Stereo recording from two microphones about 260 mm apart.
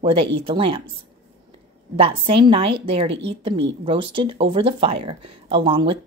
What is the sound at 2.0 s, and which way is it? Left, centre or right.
A woman's voice, right.